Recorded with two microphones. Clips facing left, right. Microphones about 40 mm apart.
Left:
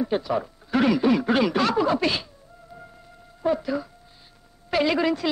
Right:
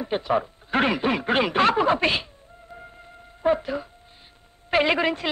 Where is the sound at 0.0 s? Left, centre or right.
Right.